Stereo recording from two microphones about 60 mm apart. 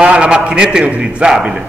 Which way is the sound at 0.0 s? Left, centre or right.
Centre.